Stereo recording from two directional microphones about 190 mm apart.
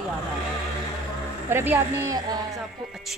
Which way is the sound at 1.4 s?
10° right (ahead or behind).